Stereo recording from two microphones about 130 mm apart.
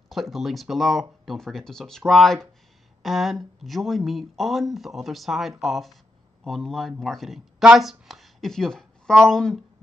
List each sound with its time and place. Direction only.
0.1 s speech: centre (ahead or behind)